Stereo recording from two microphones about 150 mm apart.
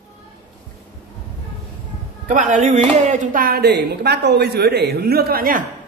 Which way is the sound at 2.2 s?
55° right (ahead or behind).